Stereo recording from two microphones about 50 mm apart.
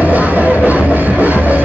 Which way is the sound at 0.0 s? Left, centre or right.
Right.